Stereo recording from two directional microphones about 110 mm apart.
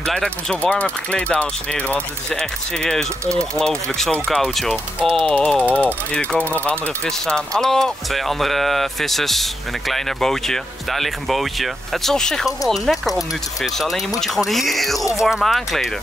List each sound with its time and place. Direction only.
0.0 s speech: 5° left (ahead or behind)
15.0 s speech: 30° left (ahead or behind)
15.2 s speech: centre (ahead or behind)